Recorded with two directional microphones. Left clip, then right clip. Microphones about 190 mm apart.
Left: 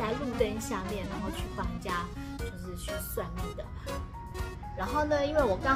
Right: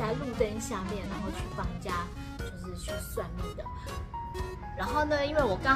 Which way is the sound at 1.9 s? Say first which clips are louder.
Even; 20° left (ahead or behind).